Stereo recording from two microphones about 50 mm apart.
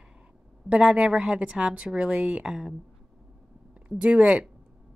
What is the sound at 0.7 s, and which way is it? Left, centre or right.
Speech, right.